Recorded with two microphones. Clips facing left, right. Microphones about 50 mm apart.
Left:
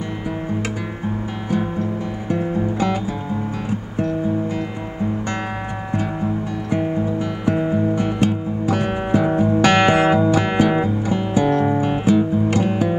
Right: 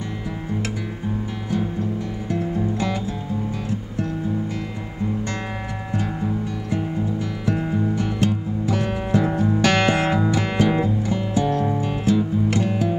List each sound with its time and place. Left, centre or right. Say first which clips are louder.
2.2 s music: left 3 dB; left
7.2 s music: left 4 dB; left
11.4 s music: left 5 dB; left